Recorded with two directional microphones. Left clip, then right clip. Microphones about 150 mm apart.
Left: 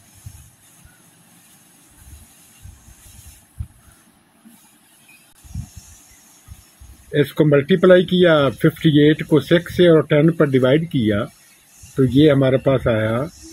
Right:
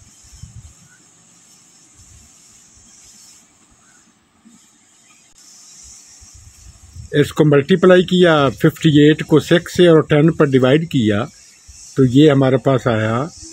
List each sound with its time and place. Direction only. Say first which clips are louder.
7.1 s speech: right 2 dB; 60° right (ahead or behind)